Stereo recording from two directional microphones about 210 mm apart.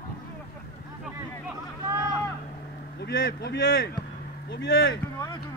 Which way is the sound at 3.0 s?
50° left (ahead or behind).